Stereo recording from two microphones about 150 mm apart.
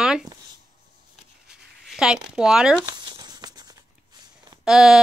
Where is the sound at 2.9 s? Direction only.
30° right (ahead or behind).